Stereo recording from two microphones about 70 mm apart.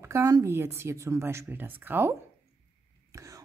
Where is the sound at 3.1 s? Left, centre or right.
Right.